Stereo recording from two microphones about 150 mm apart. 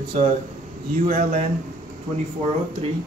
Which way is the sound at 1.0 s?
60° right (ahead or behind).